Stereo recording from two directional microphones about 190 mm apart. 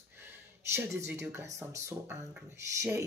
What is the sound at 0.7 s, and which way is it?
Speech, 15° right (ahead or behind).